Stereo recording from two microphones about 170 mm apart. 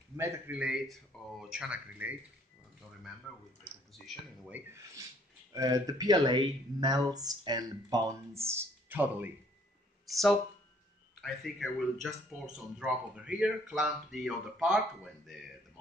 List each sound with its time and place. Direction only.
0.1 s speech: 15° right (ahead or behind)
3.3 s speech: 5° left (ahead or behind)
4.0 s speech: 5° right (ahead or behind)
5.5 s speech: 20° right (ahead or behind)
10.0 s speech: centre (ahead or behind)